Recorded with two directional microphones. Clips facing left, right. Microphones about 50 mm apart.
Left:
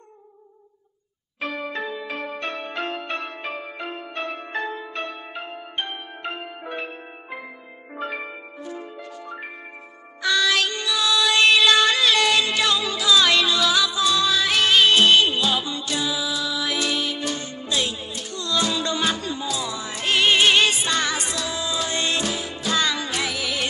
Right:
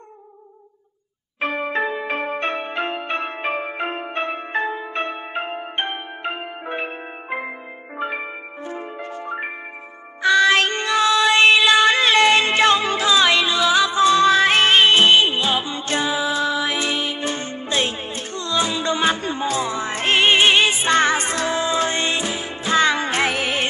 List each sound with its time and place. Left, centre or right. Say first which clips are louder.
1.4 s music: right 6 dB; right
6.2 s music: right 3 dB; right
8.0 s music: right 4 dB; centre
8.6 s music: right 5 dB; right
15.8 s music: right 5 dB; right